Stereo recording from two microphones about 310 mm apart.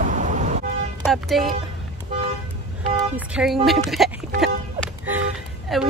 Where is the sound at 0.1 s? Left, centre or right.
Right.